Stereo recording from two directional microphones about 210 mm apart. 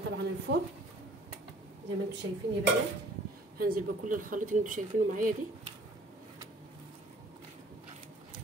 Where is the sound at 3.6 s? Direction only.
45° right (ahead or behind).